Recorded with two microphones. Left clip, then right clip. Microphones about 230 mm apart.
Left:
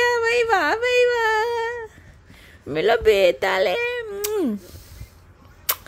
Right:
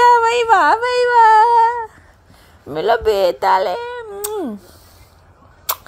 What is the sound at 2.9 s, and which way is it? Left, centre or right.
Speech, left.